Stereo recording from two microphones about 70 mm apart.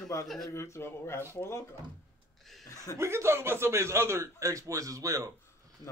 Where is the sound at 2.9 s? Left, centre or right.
Right.